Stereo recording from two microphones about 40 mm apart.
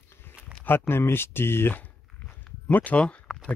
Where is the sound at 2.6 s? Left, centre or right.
Left.